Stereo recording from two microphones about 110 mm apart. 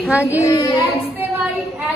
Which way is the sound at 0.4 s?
30° left (ahead or behind).